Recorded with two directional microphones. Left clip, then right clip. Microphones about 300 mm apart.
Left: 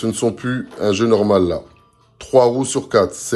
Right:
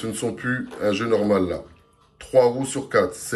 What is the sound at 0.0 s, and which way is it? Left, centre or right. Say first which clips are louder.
Speech: left 7 dB; centre.